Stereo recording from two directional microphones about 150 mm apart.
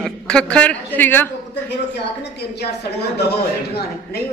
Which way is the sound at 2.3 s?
90° left.